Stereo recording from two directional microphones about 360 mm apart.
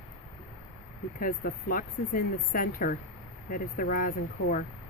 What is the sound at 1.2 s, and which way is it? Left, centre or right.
Speech, left.